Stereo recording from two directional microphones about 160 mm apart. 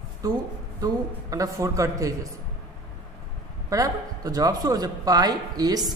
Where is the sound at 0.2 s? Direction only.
20° right (ahead or behind).